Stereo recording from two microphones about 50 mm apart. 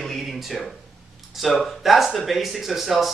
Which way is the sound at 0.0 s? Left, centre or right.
Centre.